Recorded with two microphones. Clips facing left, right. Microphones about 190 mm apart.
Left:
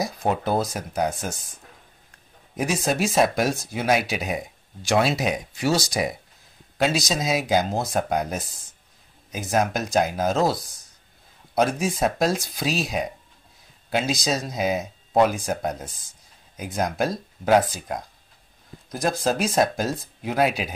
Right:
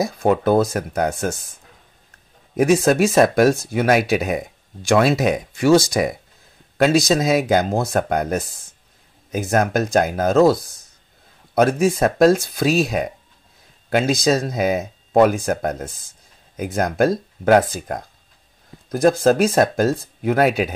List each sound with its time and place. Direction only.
0.0 s speech: 55° right (ahead or behind)
2.5 s speech: 55° right (ahead or behind)